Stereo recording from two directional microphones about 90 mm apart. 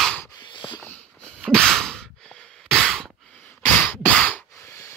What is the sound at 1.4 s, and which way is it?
Sigh, 5° left (ahead or behind).